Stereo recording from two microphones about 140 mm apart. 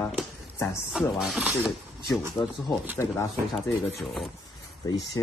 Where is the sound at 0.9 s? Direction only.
5° right (ahead or behind).